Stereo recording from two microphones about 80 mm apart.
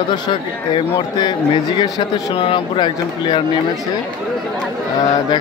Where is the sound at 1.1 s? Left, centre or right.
Left.